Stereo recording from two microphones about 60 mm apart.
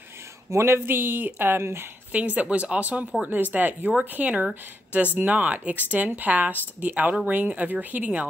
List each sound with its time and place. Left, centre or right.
0.5 s speech: right
2.1 s speech: right